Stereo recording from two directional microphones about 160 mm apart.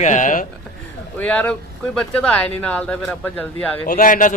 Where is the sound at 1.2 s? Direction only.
10° left (ahead or behind).